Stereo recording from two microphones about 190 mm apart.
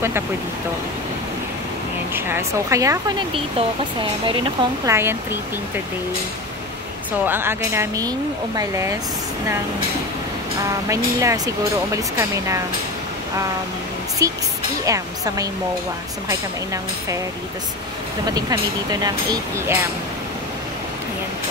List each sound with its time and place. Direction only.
2.1 s speech: 10° right (ahead or behind)
4.8 s speech: 15° right (ahead or behind)
7.2 s speech: 10° right (ahead or behind)
10.6 s speech: 15° right (ahead or behind)
14.2 s speech: 15° right (ahead or behind)
18.2 s speech: 20° right (ahead or behind)